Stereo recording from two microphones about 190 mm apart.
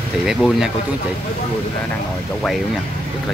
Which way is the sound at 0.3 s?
Centre (ahead or behind).